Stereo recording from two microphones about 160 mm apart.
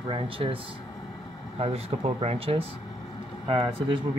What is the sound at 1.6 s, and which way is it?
Speech, 40° right (ahead or behind).